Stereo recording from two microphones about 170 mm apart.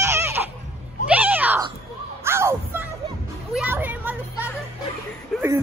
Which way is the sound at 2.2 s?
15° right (ahead or behind).